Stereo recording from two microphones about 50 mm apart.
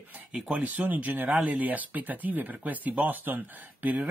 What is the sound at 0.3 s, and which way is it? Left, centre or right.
Speech, right.